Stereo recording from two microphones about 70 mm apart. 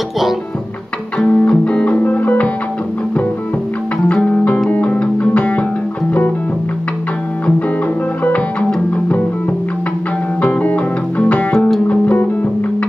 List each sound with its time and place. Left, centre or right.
1.2 s music: left
4.1 s music: centre
8.2 s music: centre
10.4 s music: left